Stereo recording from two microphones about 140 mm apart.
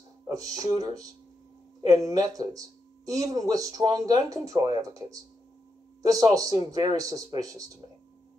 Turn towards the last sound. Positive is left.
turn(degrees=-25)  # may be behind; listen again after turning